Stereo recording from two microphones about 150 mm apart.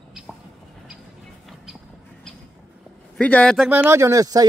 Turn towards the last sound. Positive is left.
turn(degrees=-25)  # may be behind; listen again after turning